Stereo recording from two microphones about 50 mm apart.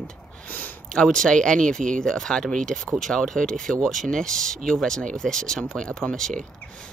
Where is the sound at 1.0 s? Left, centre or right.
Centre.